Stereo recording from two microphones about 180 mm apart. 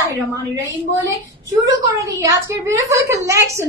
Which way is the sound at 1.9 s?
15° right (ahead or behind).